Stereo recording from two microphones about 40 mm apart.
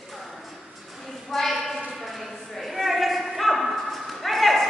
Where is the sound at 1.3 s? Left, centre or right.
Centre.